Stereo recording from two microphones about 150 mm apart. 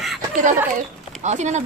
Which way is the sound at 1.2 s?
50° right (ahead or behind).